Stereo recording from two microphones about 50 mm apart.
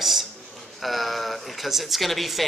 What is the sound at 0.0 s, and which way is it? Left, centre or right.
A man's voice, centre.